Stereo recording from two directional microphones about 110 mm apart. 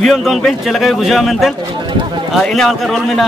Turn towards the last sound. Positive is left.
turn(degrees=0)  # may be behind; listen again after turning